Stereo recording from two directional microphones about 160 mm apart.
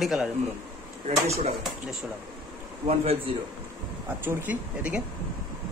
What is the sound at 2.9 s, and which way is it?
Speech, 40° right (ahead or behind).